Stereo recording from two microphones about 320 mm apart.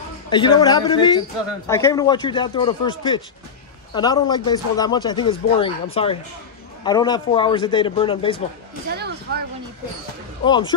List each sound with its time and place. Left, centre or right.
0.3 s speech: centre
8.9 s speech: right
10.4 s speech: centre